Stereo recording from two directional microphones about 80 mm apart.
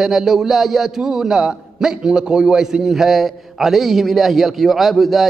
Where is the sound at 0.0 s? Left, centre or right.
Centre.